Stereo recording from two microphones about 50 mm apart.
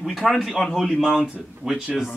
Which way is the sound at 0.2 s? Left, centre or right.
Centre.